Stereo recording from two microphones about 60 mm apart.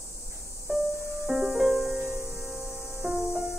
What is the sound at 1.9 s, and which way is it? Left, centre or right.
Music, right.